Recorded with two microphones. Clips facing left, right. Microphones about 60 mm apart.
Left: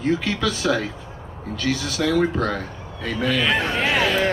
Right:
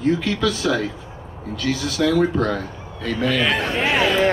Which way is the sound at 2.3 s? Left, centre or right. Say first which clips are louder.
Right 2 dB; centre.